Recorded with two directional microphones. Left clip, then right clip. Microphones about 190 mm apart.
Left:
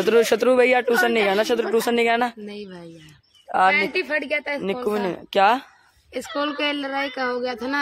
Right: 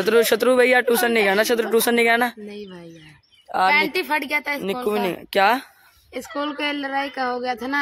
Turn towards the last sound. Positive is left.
turn(degrees=-5)  # may be behind; listen again after turning